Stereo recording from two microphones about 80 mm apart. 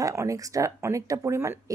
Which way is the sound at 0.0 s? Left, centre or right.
Right.